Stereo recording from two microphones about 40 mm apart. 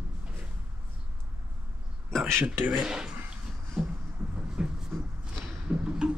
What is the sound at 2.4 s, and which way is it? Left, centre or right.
Speech, right.